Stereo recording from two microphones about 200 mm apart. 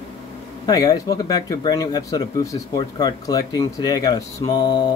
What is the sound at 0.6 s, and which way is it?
Speech, 20° left (ahead or behind).